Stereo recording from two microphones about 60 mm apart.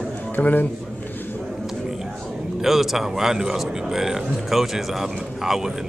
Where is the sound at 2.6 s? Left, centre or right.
Centre.